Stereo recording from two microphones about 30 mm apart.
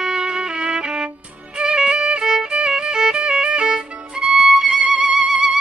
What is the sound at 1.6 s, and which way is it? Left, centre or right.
Music, right.